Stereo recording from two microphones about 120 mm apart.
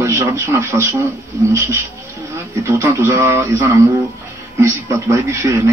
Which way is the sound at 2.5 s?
25° right (ahead or behind).